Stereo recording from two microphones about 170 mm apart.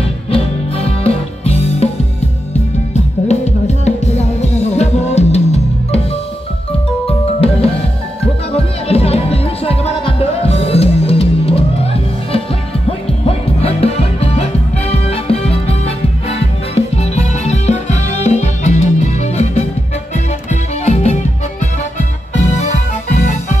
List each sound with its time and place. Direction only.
0.3 s music: 35° left (ahead or behind)
2.9 s music: 40° left (ahead or behind)
7.1 s music: 35° left (ahead or behind)
22.3 s music: 40° left (ahead or behind)